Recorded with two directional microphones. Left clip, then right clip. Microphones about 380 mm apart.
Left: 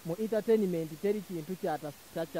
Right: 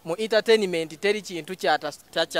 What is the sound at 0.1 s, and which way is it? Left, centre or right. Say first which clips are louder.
Speech: right 9 dB; centre.